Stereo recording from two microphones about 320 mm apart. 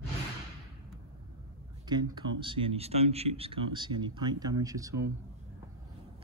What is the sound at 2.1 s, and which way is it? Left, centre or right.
Speech, centre.